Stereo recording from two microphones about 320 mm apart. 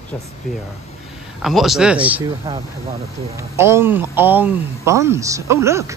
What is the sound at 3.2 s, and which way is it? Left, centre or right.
Speech, centre.